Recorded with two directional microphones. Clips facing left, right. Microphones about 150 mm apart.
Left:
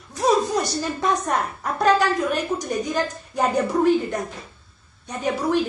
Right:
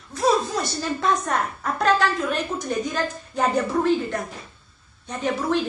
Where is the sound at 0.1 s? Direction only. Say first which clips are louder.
Left 2 dB; 15° left (ahead or behind).